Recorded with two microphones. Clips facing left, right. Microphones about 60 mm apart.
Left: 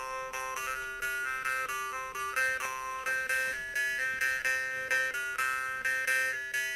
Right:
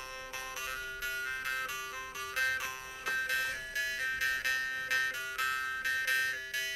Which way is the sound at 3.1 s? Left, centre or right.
Left.